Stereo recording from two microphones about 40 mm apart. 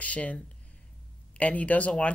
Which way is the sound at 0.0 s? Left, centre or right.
Left.